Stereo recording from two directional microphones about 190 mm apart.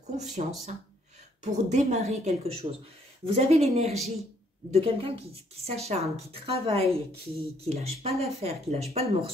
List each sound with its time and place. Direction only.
0.0 s speech: 35° right (ahead or behind)